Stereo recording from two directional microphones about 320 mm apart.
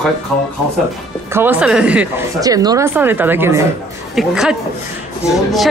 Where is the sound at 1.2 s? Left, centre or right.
Centre.